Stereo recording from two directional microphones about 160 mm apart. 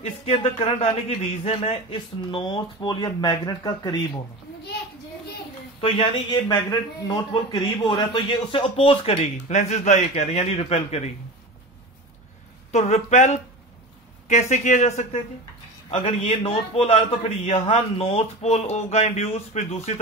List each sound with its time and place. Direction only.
0.0 s a man's voice: 40° left (ahead or behind); by 4.0 s 25° left (ahead or behind)
5.8 s a man's voice: 35° left (ahead or behind)
12.7 s a man's voice: 45° left (ahead or behind)